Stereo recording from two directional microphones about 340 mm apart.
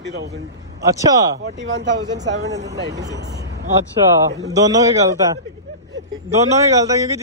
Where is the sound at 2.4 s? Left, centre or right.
Right.